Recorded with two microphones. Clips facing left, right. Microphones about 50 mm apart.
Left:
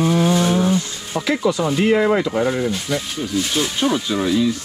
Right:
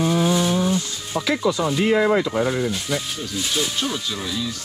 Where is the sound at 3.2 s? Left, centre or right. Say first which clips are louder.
Left 4 dB; centre.